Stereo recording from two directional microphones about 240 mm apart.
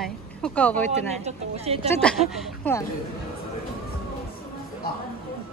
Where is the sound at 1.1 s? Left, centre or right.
Right.